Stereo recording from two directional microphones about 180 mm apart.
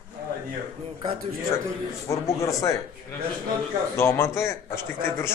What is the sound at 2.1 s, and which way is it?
Speech, 15° left (ahead or behind).